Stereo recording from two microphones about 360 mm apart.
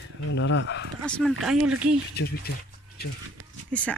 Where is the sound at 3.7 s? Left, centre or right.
Centre.